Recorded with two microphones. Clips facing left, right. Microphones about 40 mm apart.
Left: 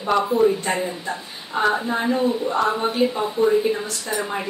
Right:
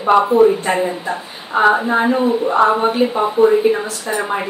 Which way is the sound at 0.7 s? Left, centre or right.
Right.